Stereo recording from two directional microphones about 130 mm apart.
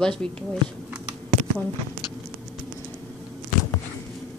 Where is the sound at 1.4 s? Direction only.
65° right (ahead or behind).